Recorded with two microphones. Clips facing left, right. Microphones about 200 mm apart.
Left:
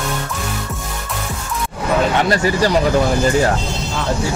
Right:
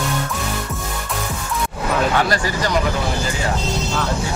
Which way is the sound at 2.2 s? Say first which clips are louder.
Left 5 dB; 25° left (ahead or behind).